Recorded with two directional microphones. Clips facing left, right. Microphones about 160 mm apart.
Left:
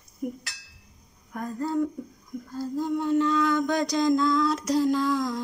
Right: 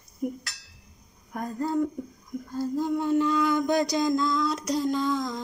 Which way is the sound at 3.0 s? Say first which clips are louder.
Left 1 dB; 15° right (ahead or behind).